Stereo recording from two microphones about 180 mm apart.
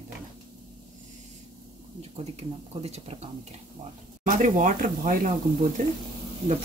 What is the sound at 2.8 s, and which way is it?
Speech, 35° right (ahead or behind).